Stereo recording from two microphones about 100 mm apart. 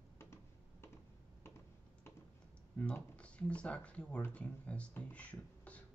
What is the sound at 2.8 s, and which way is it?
Speech, 10° left (ahead or behind).